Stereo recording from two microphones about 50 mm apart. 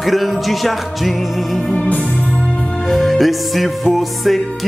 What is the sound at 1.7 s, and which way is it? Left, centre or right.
Music, left.